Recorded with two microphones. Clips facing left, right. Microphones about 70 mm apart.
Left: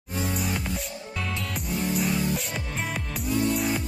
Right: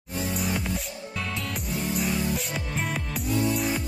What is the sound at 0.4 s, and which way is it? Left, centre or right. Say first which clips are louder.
Music: right 1 dB; centre.